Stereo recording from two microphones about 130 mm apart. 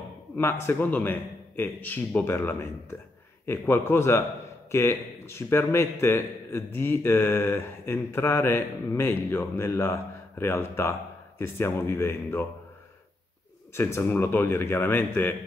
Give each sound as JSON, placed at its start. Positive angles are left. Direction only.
{"t": 0.4, "sound": "a man's voice", "side_deg": 20}
{"t": 13.7, "sound": "a man's voice", "side_deg": 20}